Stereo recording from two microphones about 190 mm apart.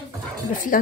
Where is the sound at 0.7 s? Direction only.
45° left (ahead or behind).